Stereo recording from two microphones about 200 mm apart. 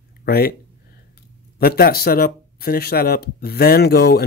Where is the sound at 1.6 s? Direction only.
50° left (ahead or behind).